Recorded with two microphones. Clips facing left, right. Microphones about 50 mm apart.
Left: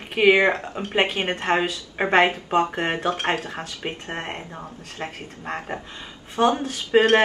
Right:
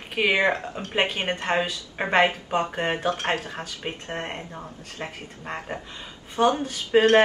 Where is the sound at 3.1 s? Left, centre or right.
Left.